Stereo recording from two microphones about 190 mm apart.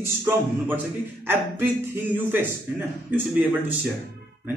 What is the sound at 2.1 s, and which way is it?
A man's voice, 10° right (ahead or behind).